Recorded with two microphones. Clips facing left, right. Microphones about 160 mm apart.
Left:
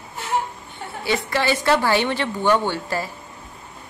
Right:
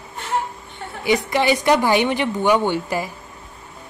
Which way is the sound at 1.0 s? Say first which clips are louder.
Right 4 dB; 15° right (ahead or behind).